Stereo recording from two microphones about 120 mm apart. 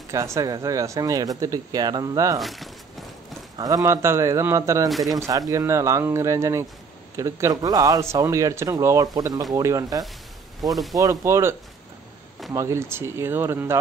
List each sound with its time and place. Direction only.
0.1 s speech: 25° right (ahead or behind)
2.4 s a sound: centre (ahead or behind)
3.5 s a man's voice: 30° right (ahead or behind)
4.8 s speech: centre (ahead or behind)
5.1 s a man's voice: 30° right (ahead or behind)
10.6 s speech: centre (ahead or behind)
11.0 s a man's voice: 25° right (ahead or behind)
12.5 s a man's voice: 25° right (ahead or behind)